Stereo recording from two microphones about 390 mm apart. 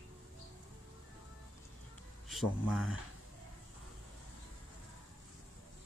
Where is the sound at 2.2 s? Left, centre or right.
Centre.